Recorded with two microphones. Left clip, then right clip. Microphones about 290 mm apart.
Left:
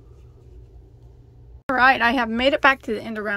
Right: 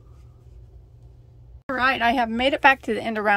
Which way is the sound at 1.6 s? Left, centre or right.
Centre.